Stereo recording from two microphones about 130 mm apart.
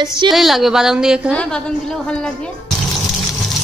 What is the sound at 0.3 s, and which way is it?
Speech, centre (ahead or behind).